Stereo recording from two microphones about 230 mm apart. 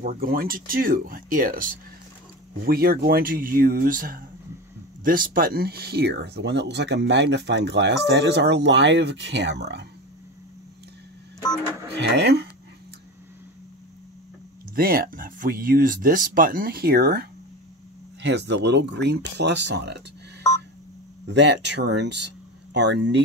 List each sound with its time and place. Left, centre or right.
0.0 s speech: right
12.0 s speech: right
14.8 s speech: right
21.3 s speech: right